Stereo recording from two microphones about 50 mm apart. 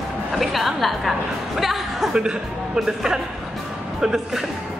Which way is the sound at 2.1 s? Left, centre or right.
Centre.